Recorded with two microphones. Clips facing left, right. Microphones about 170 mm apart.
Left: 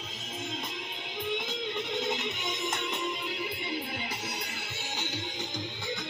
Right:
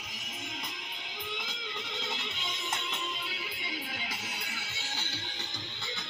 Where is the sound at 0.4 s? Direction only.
25° left (ahead or behind).